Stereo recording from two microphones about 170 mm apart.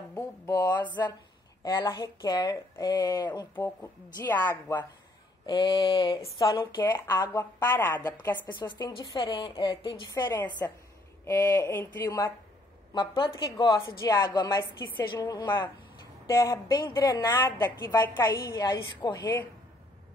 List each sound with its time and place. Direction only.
0.1 s speech: 15° left (ahead or behind)
0.8 s a woman's voice: 25° left (ahead or behind)
3.5 s a woman's voice: 10° left (ahead or behind)
5.5 s a woman's voice: 30° left (ahead or behind)
6.8 s a woman's voice: 15° left (ahead or behind)
8.5 s a woman's voice: 25° left (ahead or behind)
11.2 s a woman's voice: 15° left (ahead or behind)
12.9 s a woman's voice: 25° left (ahead or behind)
18.2 s a woman's voice: 25° left (ahead or behind)